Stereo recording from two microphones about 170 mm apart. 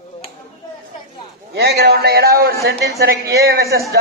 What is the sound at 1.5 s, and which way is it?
A man's voice, 75° right (ahead or behind).